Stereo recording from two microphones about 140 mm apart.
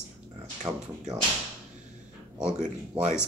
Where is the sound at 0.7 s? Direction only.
15° right (ahead or behind).